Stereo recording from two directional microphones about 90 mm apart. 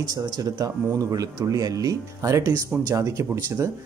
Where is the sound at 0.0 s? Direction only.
45° right (ahead or behind).